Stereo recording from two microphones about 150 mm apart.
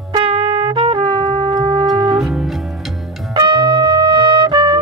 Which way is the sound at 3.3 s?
30° right (ahead or behind).